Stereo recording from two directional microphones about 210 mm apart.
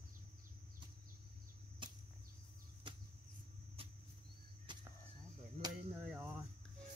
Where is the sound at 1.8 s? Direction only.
25° right (ahead or behind).